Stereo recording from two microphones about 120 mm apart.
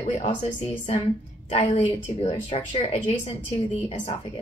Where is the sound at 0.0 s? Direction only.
80° left.